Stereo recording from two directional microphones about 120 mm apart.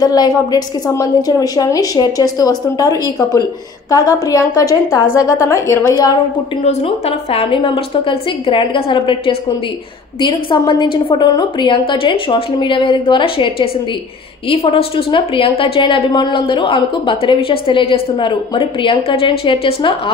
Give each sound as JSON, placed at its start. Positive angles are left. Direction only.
{"t": 0.0, "sound": "a woman's voice", "side_deg": 35}
{"t": 6.6, "sound": "a woman's voice", "side_deg": 60}